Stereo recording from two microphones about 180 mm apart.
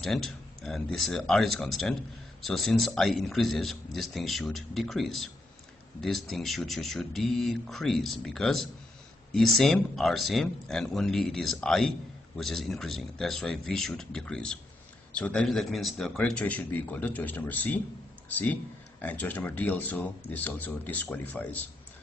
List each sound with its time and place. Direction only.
0.0 s speech: centre (ahead or behind)